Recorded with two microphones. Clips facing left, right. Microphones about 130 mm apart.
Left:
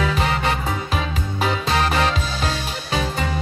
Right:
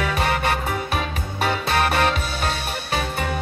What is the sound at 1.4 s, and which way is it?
Music, 60° right (ahead or behind).